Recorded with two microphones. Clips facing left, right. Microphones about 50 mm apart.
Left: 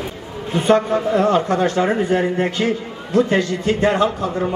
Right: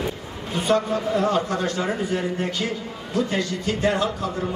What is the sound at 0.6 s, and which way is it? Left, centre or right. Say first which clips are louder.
A man's voice: left 6 dB; left.